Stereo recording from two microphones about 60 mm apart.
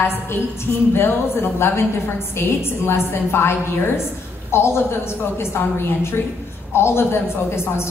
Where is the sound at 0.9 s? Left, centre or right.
Left.